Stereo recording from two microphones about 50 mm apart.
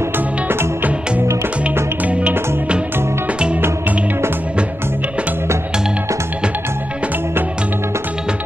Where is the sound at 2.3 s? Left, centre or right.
Right.